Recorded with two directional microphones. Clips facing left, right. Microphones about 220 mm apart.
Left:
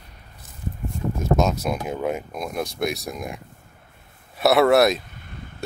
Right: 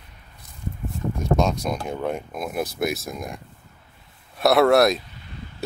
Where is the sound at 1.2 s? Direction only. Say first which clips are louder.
Left 1 dB; 5° left (ahead or behind).